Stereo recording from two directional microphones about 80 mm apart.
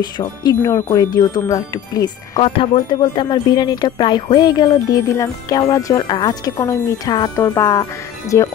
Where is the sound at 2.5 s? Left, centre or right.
Left.